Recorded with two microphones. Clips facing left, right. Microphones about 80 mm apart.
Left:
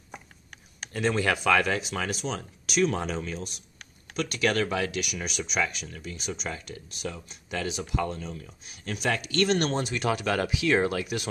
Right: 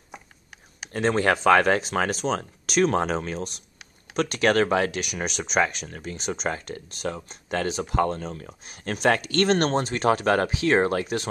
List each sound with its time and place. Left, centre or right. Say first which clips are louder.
0.9 s speech: right 4 dB; right
5.0 s speech: right 4 dB; right